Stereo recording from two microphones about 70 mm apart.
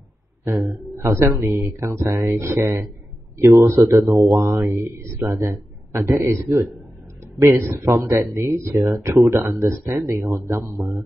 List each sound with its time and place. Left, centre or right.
1.0 s a man's voice: right
7.4 s a man's voice: right